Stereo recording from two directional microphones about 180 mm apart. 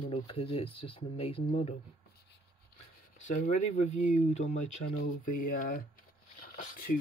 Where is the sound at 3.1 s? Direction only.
40° left (ahead or behind).